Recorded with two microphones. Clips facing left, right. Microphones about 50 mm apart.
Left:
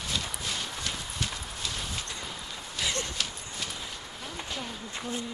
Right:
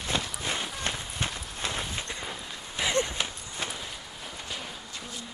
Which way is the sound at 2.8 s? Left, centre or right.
Right.